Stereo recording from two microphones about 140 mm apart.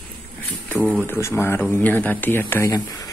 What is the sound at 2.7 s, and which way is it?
Speech, 25° left (ahead or behind).